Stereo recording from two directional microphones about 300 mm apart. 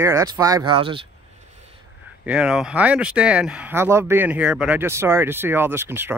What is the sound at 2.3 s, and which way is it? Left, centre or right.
Speech, centre.